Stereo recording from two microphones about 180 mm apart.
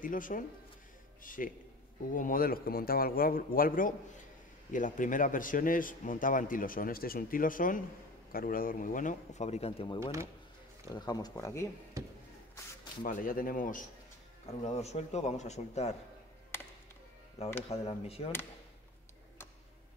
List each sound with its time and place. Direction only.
0.0 s a man's voice: 50° left (ahead or behind); by 9.9 s 30° left (ahead or behind)
10.9 s speech: 20° left (ahead or behind)
12.0 s a sound: 15° right (ahead or behind)
13.0 s a man's voice: 50° left (ahead or behind)
14.6 s a man's voice: 35° left (ahead or behind)
17.6 s a man's voice: 35° left (ahead or behind)